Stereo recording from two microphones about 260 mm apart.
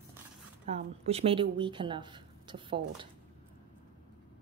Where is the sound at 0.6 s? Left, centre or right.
Right.